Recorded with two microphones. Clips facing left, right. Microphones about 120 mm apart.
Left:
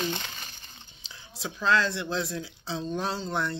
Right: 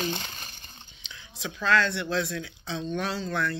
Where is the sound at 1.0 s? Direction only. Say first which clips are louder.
Even; 35° left (ahead or behind).